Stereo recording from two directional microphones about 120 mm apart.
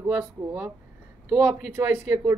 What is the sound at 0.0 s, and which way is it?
Speech, 20° right (ahead or behind).